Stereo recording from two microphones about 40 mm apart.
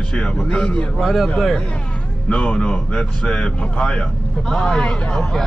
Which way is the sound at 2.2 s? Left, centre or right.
Left.